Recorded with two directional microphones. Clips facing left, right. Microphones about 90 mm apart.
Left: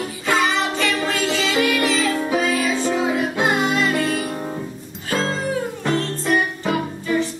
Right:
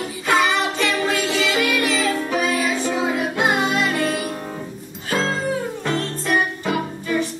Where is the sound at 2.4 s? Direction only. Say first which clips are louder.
Left 1 dB; 20° right (ahead or behind).